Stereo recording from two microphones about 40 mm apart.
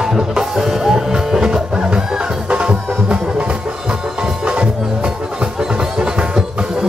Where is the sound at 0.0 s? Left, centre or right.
Centre; by 3.4 s right.